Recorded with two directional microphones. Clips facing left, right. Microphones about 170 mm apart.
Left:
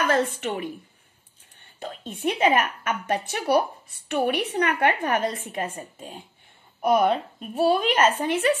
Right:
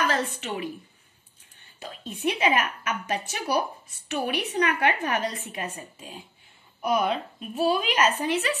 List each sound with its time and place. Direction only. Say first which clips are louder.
0.1 s a woman's voice: left 5 dB; 50° left (ahead or behind)
1.8 s a woman's voice: left 2 dB; 50° left (ahead or behind)